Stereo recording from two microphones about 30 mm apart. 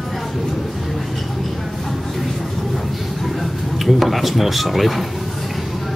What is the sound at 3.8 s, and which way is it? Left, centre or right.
Speech, centre.